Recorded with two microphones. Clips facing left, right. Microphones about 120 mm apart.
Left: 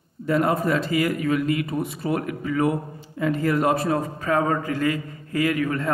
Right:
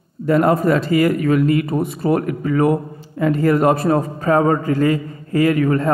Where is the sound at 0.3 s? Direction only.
55° right (ahead or behind).